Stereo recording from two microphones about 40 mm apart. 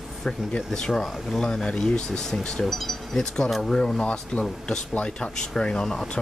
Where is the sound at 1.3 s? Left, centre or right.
Centre.